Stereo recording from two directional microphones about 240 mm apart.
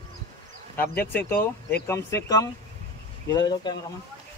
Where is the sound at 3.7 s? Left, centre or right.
Centre.